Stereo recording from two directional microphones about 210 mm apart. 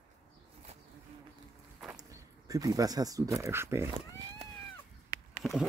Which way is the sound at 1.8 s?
5° right (ahead or behind).